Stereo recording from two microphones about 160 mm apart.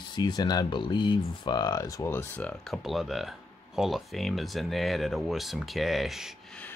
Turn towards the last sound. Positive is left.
turn(degrees=0)  # may be behind; listen again after turning